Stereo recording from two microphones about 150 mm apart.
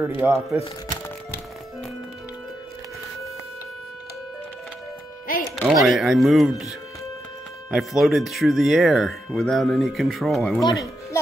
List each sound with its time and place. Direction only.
0.2 s speech: 20° right (ahead or behind)
5.4 s speech: centre (ahead or behind)
7.7 s speech: centre (ahead or behind)